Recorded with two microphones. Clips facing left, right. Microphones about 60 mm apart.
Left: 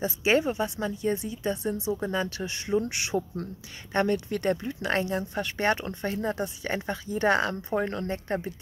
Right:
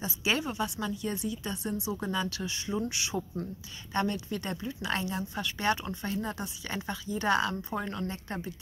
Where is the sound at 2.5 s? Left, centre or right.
Left.